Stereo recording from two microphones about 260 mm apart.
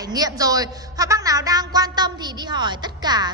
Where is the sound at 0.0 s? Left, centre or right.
Centre.